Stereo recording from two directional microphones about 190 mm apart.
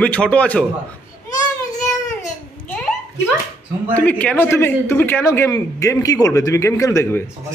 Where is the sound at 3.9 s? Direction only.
10° left (ahead or behind).